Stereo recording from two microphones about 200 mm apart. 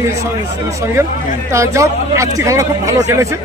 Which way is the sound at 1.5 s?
15° right (ahead or behind).